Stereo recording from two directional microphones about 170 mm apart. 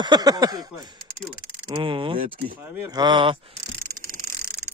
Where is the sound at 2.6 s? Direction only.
25° right (ahead or behind).